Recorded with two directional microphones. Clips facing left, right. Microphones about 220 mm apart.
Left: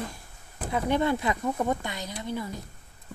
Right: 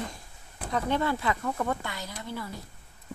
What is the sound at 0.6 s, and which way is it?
Speech, 10° left (ahead or behind).